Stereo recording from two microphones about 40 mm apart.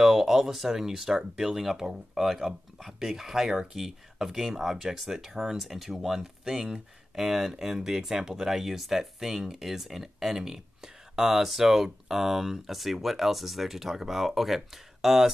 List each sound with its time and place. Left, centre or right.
0.0 s speech: centre
7.2 s speech: centre